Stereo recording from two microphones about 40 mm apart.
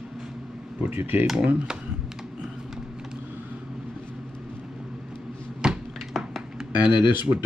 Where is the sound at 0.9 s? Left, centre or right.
Right.